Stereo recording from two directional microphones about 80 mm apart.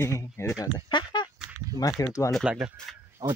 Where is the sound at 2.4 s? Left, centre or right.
Centre.